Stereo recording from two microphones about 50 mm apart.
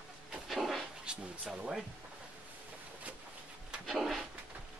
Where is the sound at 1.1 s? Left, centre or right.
Centre.